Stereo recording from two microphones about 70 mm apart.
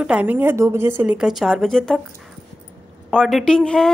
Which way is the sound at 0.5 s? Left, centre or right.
Right.